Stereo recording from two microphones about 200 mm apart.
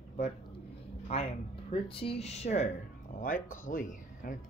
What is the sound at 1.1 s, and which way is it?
Speech, 30° left (ahead or behind).